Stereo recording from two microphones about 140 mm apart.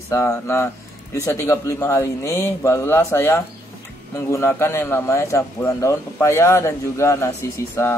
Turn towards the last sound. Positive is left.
turn(degrees=15)  # may be behind; listen again after turning